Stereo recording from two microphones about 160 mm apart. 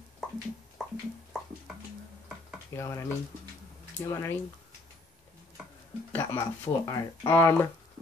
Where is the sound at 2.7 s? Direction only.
15° left (ahead or behind).